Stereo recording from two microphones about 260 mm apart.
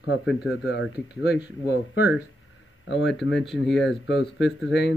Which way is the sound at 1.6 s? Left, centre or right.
Left.